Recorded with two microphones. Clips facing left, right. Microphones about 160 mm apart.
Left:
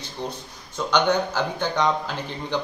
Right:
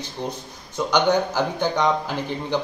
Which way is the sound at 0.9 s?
10° right (ahead or behind).